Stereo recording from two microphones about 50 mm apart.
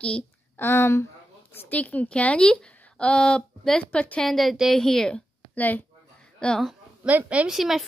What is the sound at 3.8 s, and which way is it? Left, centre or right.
Speech, left.